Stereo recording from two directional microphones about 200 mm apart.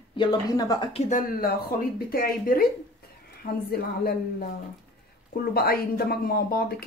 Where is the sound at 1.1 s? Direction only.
45° left (ahead or behind).